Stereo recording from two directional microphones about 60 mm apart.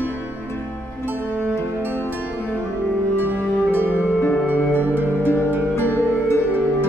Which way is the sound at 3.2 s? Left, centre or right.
Right.